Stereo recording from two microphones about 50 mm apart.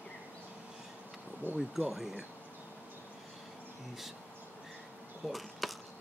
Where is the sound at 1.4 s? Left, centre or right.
Right.